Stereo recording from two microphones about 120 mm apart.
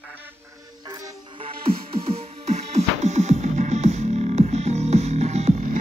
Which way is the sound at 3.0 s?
75° right (ahead or behind).